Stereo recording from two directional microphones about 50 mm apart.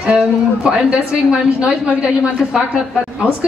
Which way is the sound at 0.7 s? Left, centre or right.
Centre.